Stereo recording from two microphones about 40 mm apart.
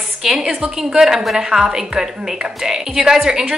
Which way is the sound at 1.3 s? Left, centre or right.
Centre.